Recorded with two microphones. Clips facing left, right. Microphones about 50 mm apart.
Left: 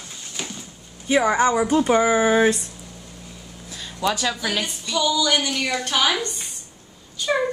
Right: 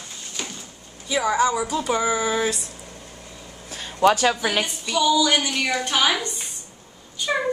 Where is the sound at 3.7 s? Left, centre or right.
Right.